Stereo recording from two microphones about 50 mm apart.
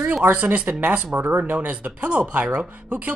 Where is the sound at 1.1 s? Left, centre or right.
Right.